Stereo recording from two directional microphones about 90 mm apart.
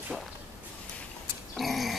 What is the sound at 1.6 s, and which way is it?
Dog, centre (ahead or behind).